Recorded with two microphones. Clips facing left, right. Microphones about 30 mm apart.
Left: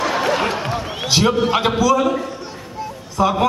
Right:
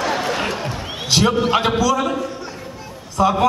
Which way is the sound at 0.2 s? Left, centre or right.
Centre.